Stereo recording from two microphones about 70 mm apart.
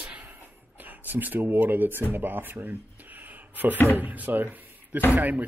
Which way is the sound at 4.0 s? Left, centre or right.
Right.